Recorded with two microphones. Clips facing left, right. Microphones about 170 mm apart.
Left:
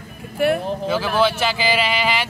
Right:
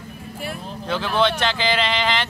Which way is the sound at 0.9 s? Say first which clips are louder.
Left 1 dB; 5° left (ahead or behind).